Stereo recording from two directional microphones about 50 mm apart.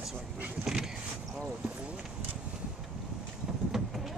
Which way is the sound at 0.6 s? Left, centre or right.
Centre.